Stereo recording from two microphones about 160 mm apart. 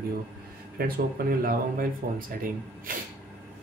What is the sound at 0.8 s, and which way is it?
Speech, 75° right (ahead or behind).